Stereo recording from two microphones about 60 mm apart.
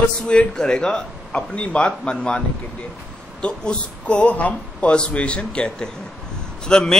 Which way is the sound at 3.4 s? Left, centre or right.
Centre.